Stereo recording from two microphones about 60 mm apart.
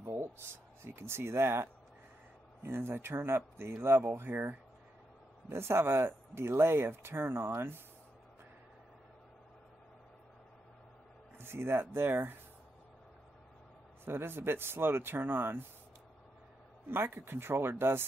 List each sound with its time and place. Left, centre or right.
0.8 s speech: right
5.5 s speech: right
11.3 s speech: right
14.0 s speech: right
16.9 s speech: right